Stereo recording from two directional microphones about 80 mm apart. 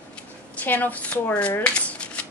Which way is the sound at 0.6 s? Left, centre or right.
Left.